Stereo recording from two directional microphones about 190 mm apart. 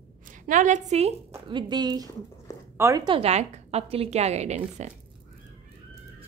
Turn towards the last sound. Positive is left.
turn(degrees=-35)  # may be behind; listen again after turning